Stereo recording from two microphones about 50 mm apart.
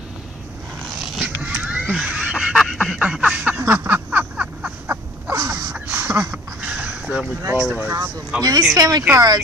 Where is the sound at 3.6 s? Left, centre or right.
Right.